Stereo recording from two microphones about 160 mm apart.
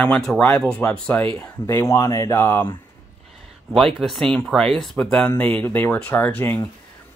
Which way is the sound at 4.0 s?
Centre (ahead or behind).